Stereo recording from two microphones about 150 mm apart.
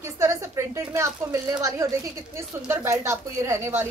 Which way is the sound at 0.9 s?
20° right (ahead or behind).